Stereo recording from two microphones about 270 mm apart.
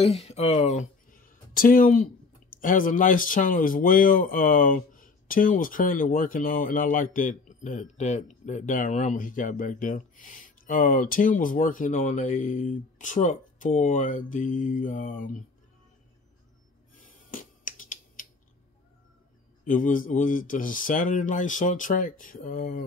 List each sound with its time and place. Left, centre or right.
0.0 s speech: left
17.3 s finger snapping: left
19.6 s speech: left